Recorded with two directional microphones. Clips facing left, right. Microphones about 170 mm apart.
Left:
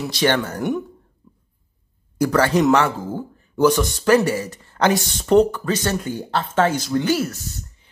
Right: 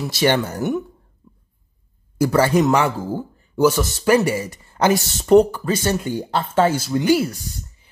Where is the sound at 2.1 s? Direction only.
10° right (ahead or behind).